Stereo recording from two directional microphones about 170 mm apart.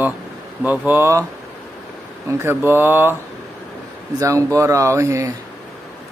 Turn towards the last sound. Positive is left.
turn(degrees=-15)  # may be behind; listen again after turning